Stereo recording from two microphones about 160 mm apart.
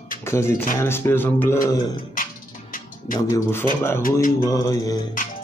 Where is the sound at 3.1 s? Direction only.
15° left (ahead or behind).